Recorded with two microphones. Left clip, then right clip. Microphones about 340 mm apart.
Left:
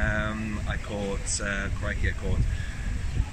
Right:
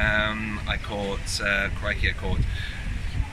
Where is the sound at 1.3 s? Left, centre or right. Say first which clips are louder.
Right 11 dB; centre.